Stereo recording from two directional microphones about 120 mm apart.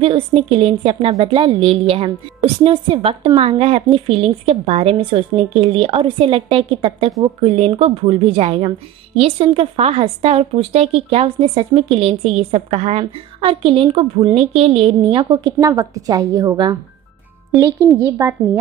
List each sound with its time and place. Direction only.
0.0 s a woman's voice: 50° right (ahead or behind); by 18.3 s 25° right (ahead or behind)